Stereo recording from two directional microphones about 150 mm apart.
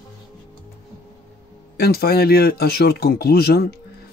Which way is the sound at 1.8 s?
90° left.